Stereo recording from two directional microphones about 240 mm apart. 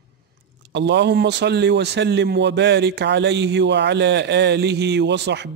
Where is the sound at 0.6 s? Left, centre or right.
Right.